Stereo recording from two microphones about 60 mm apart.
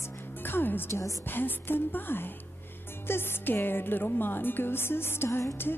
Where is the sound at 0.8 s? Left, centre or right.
Left.